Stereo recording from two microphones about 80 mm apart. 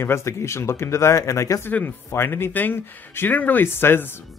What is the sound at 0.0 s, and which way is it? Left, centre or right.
Speech, left.